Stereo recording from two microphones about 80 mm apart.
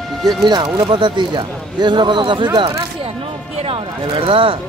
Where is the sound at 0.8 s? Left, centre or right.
Right.